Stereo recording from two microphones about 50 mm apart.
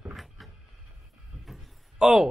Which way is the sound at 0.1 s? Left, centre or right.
Centre.